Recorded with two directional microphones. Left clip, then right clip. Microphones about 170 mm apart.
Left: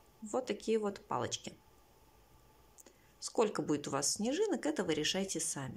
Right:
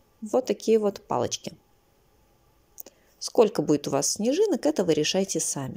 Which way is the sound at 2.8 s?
25° right (ahead or behind).